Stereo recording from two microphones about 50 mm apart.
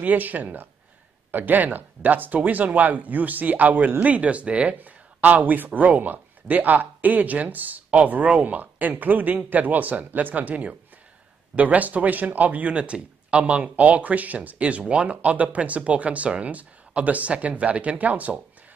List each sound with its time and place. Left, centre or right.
0.0 s speech: right